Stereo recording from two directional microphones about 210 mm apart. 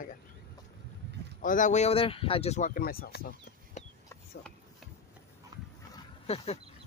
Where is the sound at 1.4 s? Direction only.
40° left (ahead or behind).